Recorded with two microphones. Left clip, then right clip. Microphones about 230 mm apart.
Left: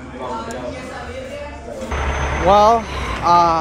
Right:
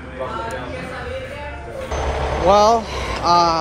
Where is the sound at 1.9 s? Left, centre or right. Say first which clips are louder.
Even; right.